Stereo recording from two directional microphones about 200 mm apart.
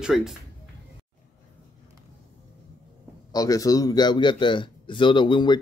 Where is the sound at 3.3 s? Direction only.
20° left (ahead or behind).